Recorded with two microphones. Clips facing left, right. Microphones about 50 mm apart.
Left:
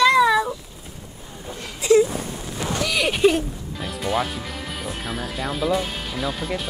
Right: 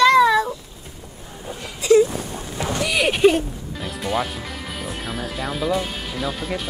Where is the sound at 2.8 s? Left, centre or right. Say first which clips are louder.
Right 2 dB; centre.